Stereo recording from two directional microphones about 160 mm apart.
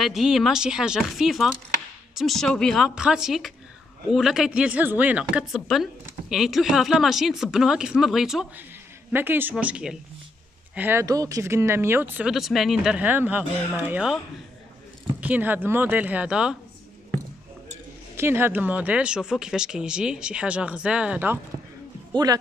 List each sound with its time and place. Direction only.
0.0 s a woman's voice: centre (ahead or behind)
18.1 s speech: 15° right (ahead or behind)
22.1 s speech: 25° right (ahead or behind)